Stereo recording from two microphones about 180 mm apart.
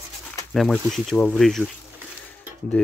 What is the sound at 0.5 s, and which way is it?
Speech, centre (ahead or behind).